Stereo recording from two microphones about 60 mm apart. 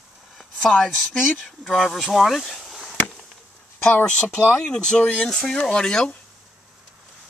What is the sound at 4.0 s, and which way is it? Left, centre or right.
Speech, centre.